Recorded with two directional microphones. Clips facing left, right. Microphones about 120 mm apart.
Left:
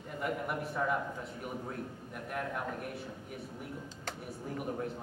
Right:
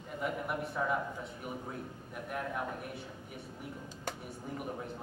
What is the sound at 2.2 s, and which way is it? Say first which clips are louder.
Speech: even; centre (ahead or behind).